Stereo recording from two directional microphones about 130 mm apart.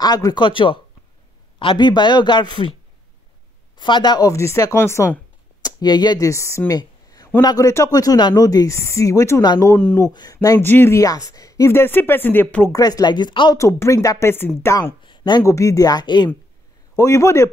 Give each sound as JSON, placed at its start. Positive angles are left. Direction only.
{"t": 0.0, "sound": "speech", "side_deg": 30}
{"t": 3.7, "sound": "speech", "side_deg": 35}
{"t": 6.7, "sound": "a sound", "side_deg": 30}
{"t": 7.4, "sound": "speech", "side_deg": 25}
{"t": 12.7, "sound": "speech", "side_deg": 30}
{"t": 13.6, "sound": "speech", "side_deg": 25}
{"t": 15.0, "sound": "a sound", "side_deg": 35}
{"t": 15.4, "sound": "speech", "side_deg": 25}